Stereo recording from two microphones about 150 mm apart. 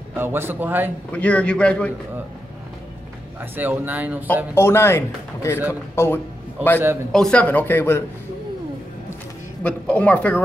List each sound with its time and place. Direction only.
0.2 s speech: 15° right (ahead or behind)
1.1 s speech: 10° left (ahead or behind)
3.3 s speech: 10° right (ahead or behind)
4.6 s a man's voice: 15° left (ahead or behind)
9.6 s speech: 10° left (ahead or behind)